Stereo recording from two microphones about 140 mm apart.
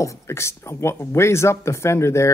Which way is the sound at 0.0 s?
20° left (ahead or behind).